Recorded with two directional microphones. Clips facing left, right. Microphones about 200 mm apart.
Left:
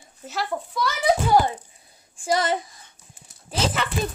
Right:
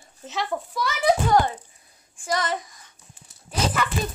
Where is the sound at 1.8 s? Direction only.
30° left (ahead or behind).